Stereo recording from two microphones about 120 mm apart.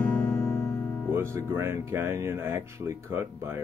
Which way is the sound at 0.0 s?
10° left (ahead or behind).